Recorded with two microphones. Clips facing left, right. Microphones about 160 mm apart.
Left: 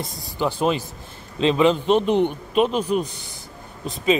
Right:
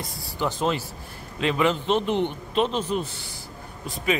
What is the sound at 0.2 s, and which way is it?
A man's voice, 15° left (ahead or behind).